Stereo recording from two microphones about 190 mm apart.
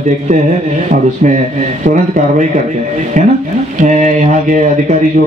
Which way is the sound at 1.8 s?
40° right (ahead or behind).